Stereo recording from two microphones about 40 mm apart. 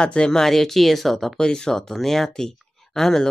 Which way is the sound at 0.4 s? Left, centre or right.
Centre.